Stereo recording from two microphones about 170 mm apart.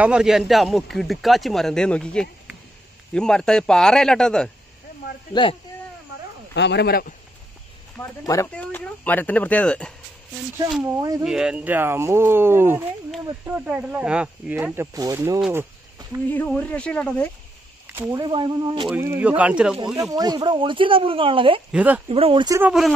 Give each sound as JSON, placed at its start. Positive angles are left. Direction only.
{"t": 0.0, "sound": "a man's voice", "side_deg": -5}
{"t": 5.3, "sound": "speech", "side_deg": 30}
{"t": 6.5, "sound": "speech", "side_deg": 90}
{"t": 8.0, "sound": "speech", "side_deg": 15}
{"t": 11.0, "sound": "speech", "side_deg": -20}
{"t": 11.2, "sound": "speech", "side_deg": -5}
{"t": 16.3, "sound": "speech", "side_deg": 10}
{"t": 18.1, "sound": "speech", "side_deg": -25}
{"t": 18.9, "sound": "speech", "side_deg": -10}
{"t": 20.0, "sound": "speech", "side_deg": -20}
{"t": 21.7, "sound": "speech", "side_deg": -10}
{"t": 22.1, "sound": "speech", "side_deg": -30}
{"t": 22.6, "sound": "a man's voice", "side_deg": -5}